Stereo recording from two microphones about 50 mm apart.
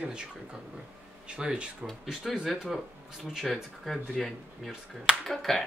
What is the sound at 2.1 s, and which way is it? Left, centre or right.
Speech, centre.